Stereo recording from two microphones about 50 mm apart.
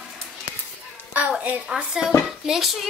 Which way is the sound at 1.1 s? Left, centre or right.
Right.